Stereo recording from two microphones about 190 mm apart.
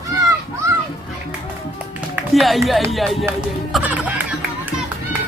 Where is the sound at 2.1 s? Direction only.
Centre (ahead or behind).